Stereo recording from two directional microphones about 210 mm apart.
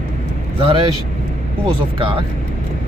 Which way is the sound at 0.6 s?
25° right (ahead or behind).